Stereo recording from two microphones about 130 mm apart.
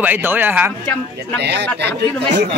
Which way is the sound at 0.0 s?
15° right (ahead or behind).